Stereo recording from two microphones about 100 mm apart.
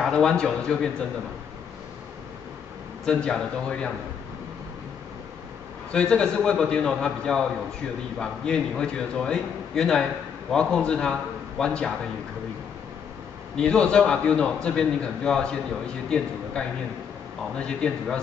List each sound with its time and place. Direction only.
0.0 s a man's voice: 5° left (ahead or behind)
3.1 s a man's voice: 10° left (ahead or behind)
5.9 s a man's voice: 10° left (ahead or behind)
13.6 s a man's voice: 10° left (ahead or behind)
17.6 s a man's voice: 10° left (ahead or behind)